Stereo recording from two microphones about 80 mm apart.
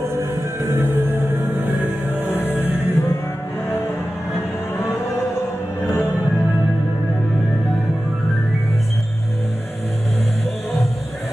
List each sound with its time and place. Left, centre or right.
0.2 s music: right
2.3 s music: left